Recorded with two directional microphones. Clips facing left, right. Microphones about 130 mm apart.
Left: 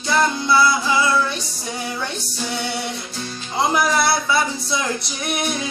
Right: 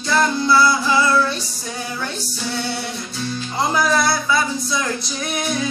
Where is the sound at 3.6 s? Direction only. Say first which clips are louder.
Even; 25° left (ahead or behind).